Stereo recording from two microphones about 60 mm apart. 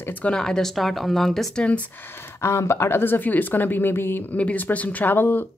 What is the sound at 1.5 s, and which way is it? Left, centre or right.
Speech, centre.